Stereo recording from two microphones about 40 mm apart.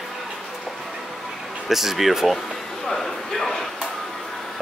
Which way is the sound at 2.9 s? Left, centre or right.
Centre.